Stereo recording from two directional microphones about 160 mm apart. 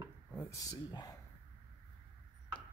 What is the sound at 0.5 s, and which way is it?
Speech, 25° left (ahead or behind).